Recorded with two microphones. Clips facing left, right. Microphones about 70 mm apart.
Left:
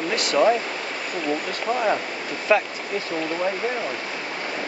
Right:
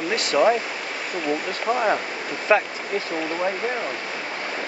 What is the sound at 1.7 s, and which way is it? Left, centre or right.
Speech, centre.